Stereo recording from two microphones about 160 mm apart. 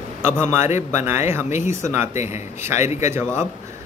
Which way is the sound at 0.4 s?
15° right (ahead or behind).